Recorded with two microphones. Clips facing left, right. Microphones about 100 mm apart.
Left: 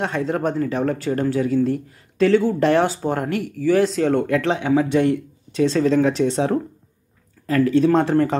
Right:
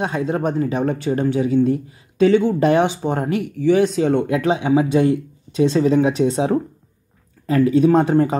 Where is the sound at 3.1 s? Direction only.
25° right (ahead or behind).